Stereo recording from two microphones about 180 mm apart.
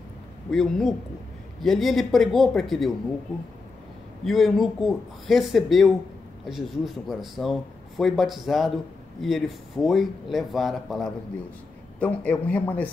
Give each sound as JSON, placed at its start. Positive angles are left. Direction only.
{"t": 0.5, "sound": "speech", "side_deg": 0}
{"t": 4.2, "sound": "a man's voice", "side_deg": 0}